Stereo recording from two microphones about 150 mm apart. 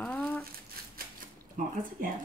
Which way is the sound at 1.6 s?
65° right (ahead or behind).